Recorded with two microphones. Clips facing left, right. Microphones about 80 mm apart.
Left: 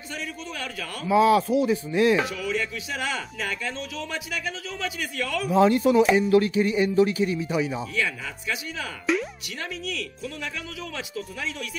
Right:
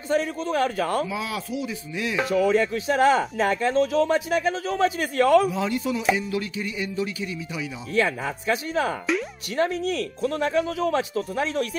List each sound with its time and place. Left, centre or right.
0.1 s speech: right
1.0 s speech: left
2.2 s speech: right
5.5 s speech: left
7.9 s speech: right